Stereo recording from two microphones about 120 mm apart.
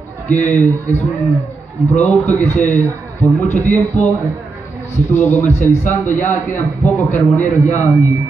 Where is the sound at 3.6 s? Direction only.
15° left (ahead or behind).